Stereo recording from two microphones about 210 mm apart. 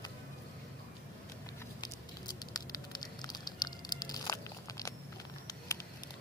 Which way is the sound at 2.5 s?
20° left (ahead or behind).